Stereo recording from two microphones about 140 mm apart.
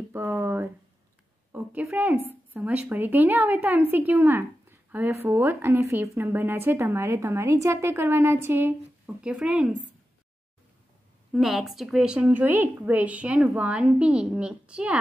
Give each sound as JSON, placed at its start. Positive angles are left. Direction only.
{"t": 0.1, "sound": "a sound", "side_deg": -15}
{"t": 1.5, "sound": "a woman's voice", "side_deg": -10}
{"t": 11.3, "sound": "a woman's voice", "side_deg": 0}